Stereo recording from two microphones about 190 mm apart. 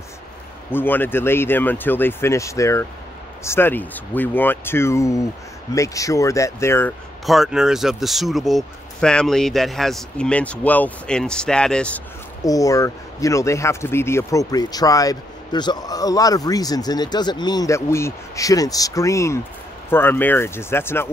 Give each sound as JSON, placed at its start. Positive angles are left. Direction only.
{"t": 0.7, "sound": "speech", "side_deg": 10}
{"t": 7.2, "sound": "speech", "side_deg": 0}
{"t": 12.4, "sound": "speech", "side_deg": 20}